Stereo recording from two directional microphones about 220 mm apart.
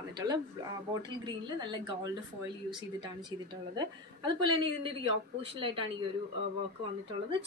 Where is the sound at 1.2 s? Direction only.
20° right (ahead or behind).